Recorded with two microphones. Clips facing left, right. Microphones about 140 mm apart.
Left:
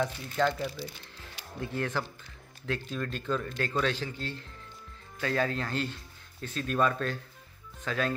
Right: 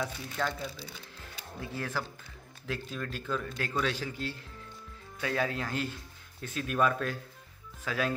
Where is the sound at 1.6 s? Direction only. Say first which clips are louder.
Left 4 dB; 5° right (ahead or behind).